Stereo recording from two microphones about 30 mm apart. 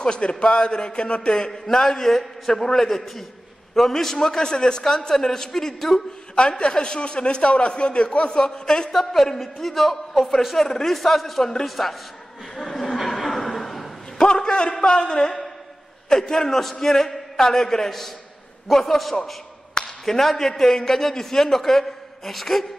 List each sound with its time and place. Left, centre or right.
0.0 s a man's voice: left
1.5 s a man's voice: centre
6.6 s a man's voice: left
8.4 s a woman's voice: left
8.9 s a man's voice: centre
10.7 s a man's voice: centre
11.0 s a man's voice: centre
12.5 s chuckle: centre
14.1 s a sound: left
16.1 s a man's voice: centre